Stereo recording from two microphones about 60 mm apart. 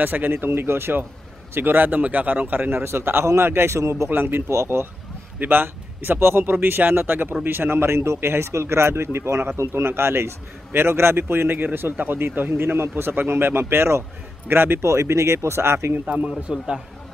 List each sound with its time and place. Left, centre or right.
0.0 s a man's voice: right
2.8 s speech: right
4.1 s a man's voice: right
4.5 s speech: right
5.4 s speech: right
6.5 s a man's voice: right
16.3 s speech: centre